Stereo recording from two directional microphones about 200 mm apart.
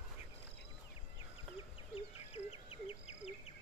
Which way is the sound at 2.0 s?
30° left (ahead or behind).